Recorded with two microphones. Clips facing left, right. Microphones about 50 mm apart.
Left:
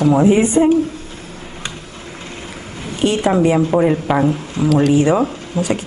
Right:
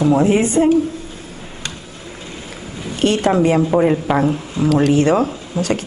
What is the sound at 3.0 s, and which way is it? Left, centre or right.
Speech, centre.